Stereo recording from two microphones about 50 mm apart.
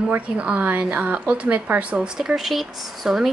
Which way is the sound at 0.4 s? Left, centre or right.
Right.